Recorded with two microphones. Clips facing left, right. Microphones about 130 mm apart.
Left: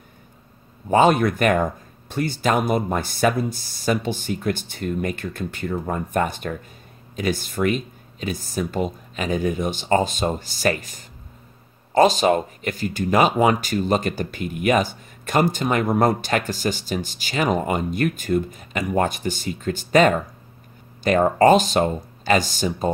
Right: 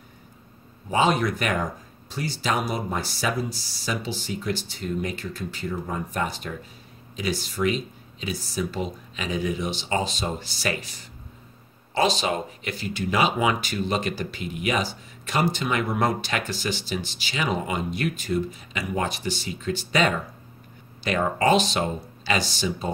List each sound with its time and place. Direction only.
0.8 s speech: 50° left (ahead or behind)